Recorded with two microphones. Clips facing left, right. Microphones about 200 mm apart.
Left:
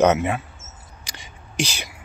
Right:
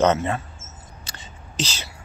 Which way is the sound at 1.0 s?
15° left (ahead or behind).